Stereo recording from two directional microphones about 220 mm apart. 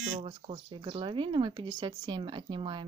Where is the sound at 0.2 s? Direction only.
25° right (ahead or behind).